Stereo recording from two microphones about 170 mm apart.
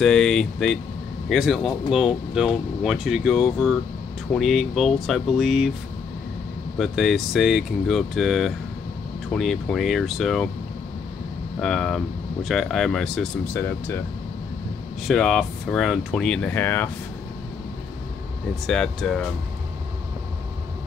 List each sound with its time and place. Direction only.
0.0 s speech: 5° left (ahead or behind)
6.8 s speech: centre (ahead or behind)
11.6 s speech: 5° left (ahead or behind)
15.0 s speech: centre (ahead or behind)
18.7 s speech: centre (ahead or behind)